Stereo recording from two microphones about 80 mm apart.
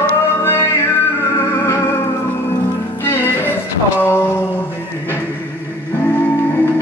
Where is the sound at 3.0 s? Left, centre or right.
Left.